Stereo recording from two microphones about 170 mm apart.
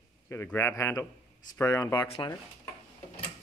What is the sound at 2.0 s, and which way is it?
Speech, 35° left (ahead or behind).